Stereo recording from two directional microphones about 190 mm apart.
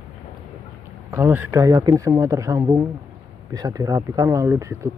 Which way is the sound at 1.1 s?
10° right (ahead or behind).